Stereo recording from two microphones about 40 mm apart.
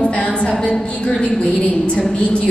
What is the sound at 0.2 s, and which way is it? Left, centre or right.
Speech, centre.